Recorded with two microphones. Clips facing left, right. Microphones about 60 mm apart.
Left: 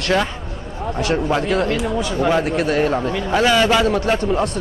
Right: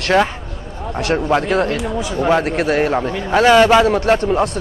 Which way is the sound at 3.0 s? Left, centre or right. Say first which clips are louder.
Right 2 dB; right.